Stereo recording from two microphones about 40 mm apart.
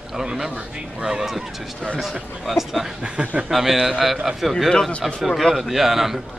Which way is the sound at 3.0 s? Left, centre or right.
Right.